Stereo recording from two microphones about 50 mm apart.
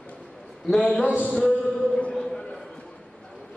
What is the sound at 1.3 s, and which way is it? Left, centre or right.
Music, centre.